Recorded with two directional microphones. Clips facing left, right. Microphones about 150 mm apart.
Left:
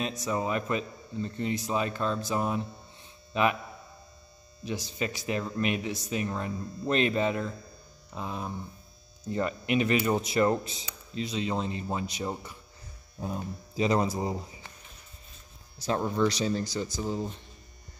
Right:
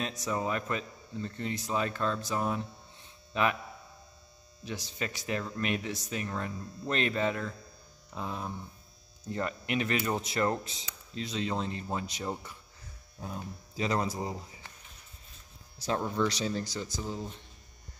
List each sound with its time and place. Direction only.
0.0 s speech: 10° left (ahead or behind)
4.6 s speech: 15° left (ahead or behind)
13.2 s speech: 20° left (ahead or behind)
16.3 s speech: centre (ahead or behind)
17.0 s speech: 30° left (ahead or behind)